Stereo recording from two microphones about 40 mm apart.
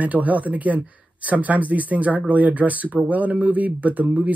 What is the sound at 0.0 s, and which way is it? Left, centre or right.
Speech, right.